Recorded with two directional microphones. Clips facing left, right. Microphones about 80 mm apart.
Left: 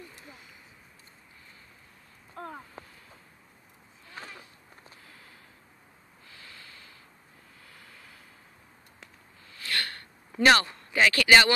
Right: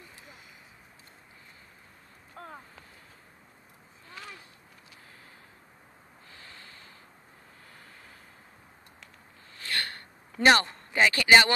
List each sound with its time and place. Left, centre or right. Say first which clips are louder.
6.3 s snort: even; right
7.7 s vehicle: even; right
9.6 s a sound: left 1 dB; right
10.4 s speech: even; right